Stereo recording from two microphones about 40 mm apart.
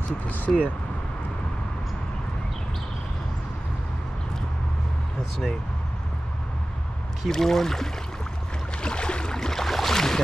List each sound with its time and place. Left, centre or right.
0.5 s speech: centre
7.2 s speech: centre
8.8 s a sound: left